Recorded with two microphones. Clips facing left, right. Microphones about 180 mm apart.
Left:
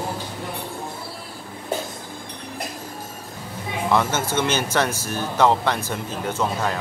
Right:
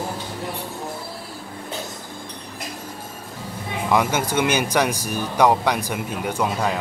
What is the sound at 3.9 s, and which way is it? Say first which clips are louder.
Speech: right 1 dB; 15° right (ahead or behind).